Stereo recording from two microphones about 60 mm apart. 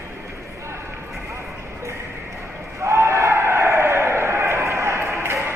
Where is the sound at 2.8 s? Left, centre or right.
Right.